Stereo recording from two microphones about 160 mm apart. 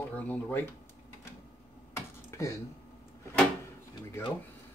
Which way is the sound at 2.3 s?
20° left (ahead or behind).